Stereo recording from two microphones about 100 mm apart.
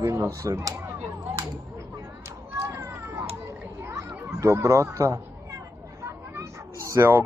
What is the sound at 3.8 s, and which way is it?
Children playing, 25° right (ahead or behind).